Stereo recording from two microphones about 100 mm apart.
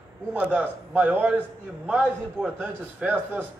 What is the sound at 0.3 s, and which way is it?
A man's voice, 15° right (ahead or behind).